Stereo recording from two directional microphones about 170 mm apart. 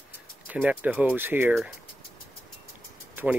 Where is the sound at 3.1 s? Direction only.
10° right (ahead or behind).